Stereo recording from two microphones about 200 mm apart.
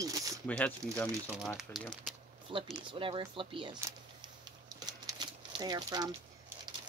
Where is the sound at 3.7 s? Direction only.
15° right (ahead or behind).